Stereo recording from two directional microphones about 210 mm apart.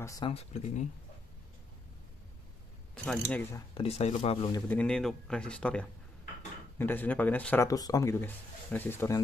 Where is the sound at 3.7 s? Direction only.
30° left (ahead or behind).